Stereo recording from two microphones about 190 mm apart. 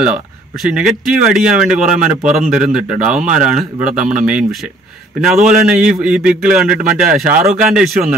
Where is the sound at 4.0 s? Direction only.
40° right (ahead or behind).